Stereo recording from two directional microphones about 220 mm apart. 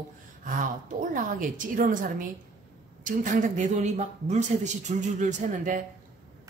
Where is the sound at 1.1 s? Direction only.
35° right (ahead or behind).